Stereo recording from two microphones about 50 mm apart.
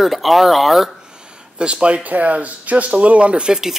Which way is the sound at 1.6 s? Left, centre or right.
Right.